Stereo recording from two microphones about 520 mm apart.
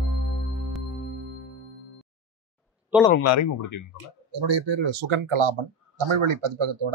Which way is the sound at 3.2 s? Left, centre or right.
Left.